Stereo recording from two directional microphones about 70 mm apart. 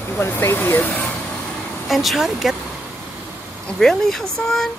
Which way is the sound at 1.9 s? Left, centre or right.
Centre.